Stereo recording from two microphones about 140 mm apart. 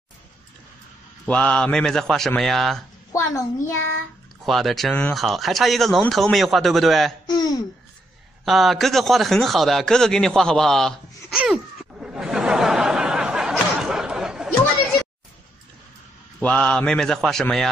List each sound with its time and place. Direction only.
1.2 s speech: 10° left (ahead or behind)
3.1 s a child's voice: 20° left (ahead or behind)
4.5 s speech: centre (ahead or behind)
7.2 s speech: 30° left (ahead or behind)
8.5 s speech: centre (ahead or behind)
11.3 s laughter: 5° right (ahead or behind)
16.3 s speech: 5° left (ahead or behind)